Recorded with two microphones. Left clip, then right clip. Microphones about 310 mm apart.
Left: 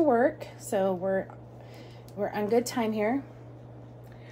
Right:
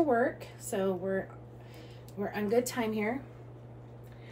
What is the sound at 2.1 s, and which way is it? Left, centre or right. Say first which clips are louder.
Speech: left 3 dB; left.